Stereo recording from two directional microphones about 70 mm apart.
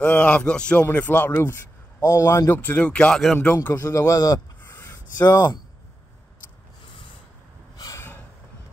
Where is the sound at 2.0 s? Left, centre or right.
Left.